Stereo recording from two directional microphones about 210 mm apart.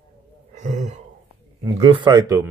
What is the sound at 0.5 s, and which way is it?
Throat clearing, 35° right (ahead or behind).